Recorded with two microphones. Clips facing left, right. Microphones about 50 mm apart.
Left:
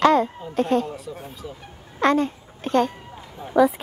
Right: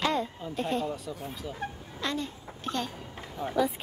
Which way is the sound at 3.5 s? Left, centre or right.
Left.